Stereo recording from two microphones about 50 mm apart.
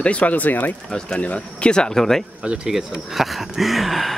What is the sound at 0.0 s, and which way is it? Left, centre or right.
Speech, left.